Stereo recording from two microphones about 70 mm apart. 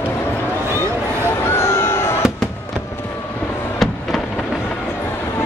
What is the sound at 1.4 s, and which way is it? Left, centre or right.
Slam, left.